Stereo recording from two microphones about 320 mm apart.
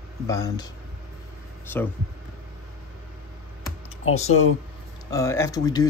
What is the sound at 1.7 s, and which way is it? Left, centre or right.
Speech, centre.